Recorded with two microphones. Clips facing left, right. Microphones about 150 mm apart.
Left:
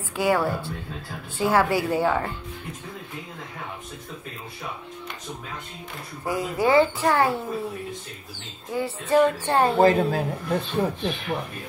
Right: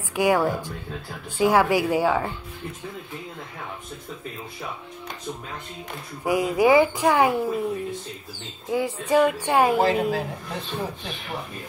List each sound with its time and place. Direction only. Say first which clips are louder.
0.1 s speech: right 2 dB; 15° right (ahead or behind)
6.2 s speech: right 4 dB; 15° right (ahead or behind)
8.7 s speech: even; 10° right (ahead or behind)
9.8 s a woman's voice: left 3 dB; 45° left (ahead or behind)